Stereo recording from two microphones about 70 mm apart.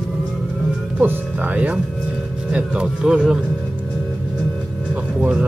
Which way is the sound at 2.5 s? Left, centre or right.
Centre.